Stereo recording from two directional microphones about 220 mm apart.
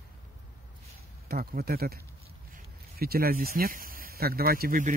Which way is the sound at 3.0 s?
45° right (ahead or behind).